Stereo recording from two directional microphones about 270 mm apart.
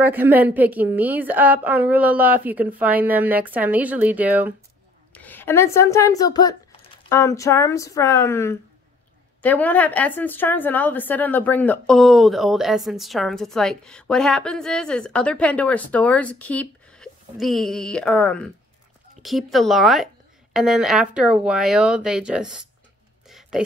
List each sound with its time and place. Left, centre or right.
0.0 s a woman's voice: centre
5.1 s a woman's voice: centre
23.2 s a sound: centre